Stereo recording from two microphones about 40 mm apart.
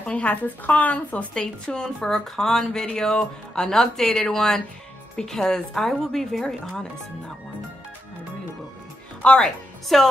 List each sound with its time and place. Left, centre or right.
0.0 s speech: left
1.3 s a woman's voice: left
9.4 s a woman's voice: centre